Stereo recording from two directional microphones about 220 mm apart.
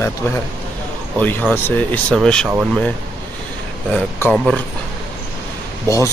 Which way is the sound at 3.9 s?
5° left (ahead or behind).